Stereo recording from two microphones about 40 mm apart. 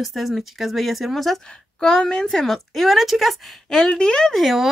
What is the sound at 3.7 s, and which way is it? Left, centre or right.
Speech, centre.